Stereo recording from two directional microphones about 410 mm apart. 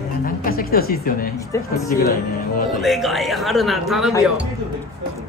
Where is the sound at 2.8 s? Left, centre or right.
Centre.